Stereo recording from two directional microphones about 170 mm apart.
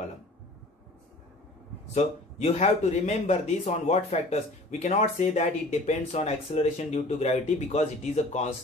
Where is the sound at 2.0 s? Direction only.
40° left (ahead or behind).